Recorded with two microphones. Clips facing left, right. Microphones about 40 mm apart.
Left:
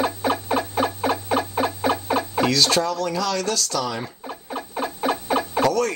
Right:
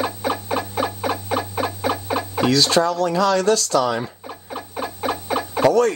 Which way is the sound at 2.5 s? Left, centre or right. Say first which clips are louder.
Right 6 dB; right.